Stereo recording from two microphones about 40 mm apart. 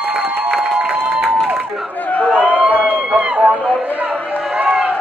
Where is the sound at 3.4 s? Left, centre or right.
Right.